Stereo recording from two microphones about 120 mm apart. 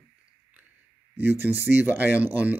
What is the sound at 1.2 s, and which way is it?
Speech, 15° right (ahead or behind).